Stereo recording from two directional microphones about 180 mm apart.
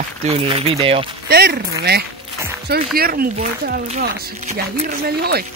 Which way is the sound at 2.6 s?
60° right (ahead or behind).